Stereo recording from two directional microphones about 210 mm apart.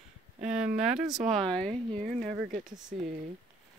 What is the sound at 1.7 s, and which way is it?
A woman's voice, 30° right (ahead or behind).